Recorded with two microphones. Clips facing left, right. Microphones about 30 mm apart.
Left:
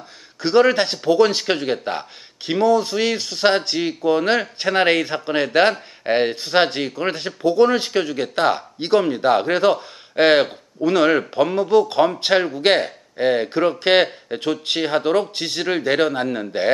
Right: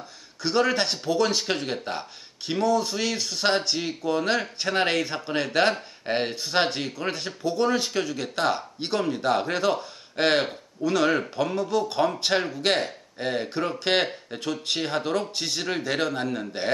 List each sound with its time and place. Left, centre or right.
0.4 s speech: left